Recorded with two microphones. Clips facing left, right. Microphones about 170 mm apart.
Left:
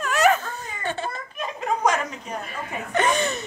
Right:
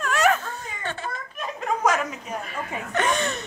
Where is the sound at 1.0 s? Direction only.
30° left (ahead or behind).